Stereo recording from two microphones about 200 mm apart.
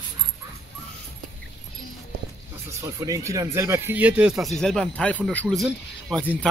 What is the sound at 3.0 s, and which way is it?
Speech, 15° right (ahead or behind).